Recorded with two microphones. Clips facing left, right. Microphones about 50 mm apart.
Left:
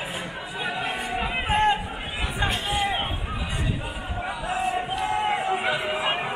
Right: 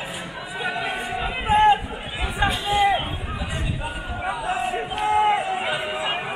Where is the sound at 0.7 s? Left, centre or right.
Centre.